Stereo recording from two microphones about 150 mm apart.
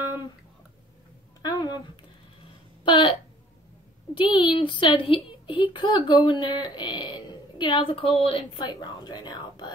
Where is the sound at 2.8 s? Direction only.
35° left (ahead or behind).